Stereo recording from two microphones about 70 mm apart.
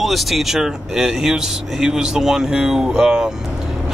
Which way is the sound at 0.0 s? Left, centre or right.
Centre.